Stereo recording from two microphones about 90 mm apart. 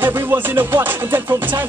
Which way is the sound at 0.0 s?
25° right (ahead or behind).